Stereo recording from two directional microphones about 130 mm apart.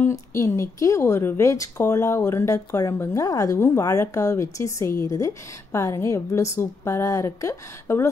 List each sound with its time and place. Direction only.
0.0 s speech: 20° left (ahead or behind)